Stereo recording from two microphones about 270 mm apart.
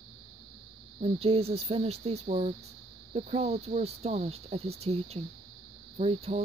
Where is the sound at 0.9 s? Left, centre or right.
Right.